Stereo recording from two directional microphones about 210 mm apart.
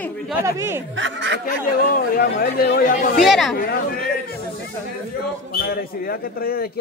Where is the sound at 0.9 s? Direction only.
60° right (ahead or behind).